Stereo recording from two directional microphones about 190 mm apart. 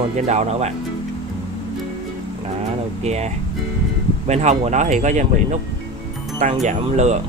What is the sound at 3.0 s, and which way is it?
Speech, 35° right (ahead or behind).